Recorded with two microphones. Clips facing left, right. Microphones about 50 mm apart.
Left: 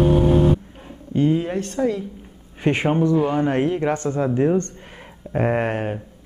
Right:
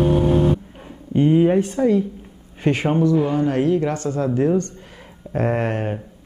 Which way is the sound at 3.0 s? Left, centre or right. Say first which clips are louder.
Right 2 dB; left.